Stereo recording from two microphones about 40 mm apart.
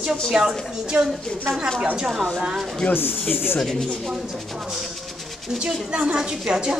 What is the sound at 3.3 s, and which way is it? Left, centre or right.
Speech, left.